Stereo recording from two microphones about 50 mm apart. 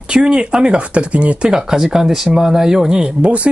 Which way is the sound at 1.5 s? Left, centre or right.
Centre.